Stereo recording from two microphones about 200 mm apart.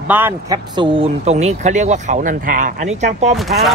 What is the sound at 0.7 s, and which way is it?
Speech, 25° right (ahead or behind).